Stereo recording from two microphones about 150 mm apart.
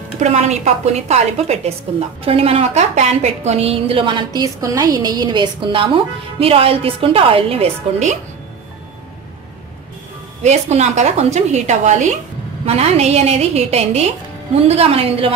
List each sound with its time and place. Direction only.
0.2 s a woman's voice: 45° right (ahead or behind)
10.4 s a woman's voice: 50° right (ahead or behind)